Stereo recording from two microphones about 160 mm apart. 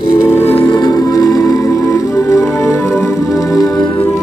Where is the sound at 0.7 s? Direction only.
25° left (ahead or behind).